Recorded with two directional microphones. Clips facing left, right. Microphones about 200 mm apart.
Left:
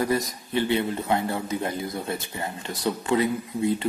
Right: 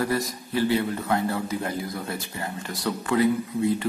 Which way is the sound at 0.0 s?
20° left (ahead or behind).